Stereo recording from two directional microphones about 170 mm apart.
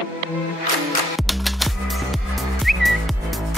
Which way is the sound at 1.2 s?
Centre (ahead or behind).